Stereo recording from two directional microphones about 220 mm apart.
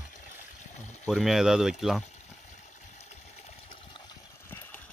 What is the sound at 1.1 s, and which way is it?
Speech, centre (ahead or behind).